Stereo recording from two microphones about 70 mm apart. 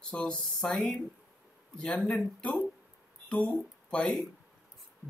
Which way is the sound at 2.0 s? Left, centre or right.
Centre.